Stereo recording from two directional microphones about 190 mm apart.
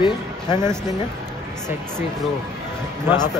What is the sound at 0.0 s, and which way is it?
Speech, 20° left (ahead or behind).